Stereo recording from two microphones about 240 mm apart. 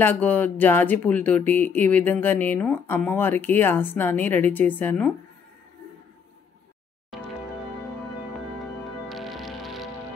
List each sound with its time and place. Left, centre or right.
0.0 s speech: centre
7.1 s music: centre
9.1 s music: centre